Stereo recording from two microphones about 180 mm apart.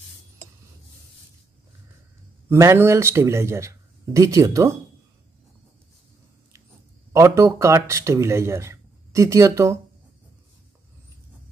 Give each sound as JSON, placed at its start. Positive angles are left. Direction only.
{"t": 2.5, "sound": "speech", "side_deg": -15}
{"t": 7.1, "sound": "speech", "side_deg": -15}